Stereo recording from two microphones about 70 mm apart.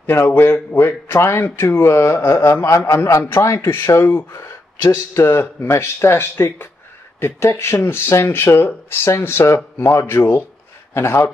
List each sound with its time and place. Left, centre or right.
0.0 s speech: left